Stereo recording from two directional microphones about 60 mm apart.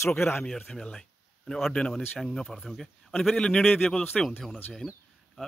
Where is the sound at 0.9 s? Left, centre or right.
Centre.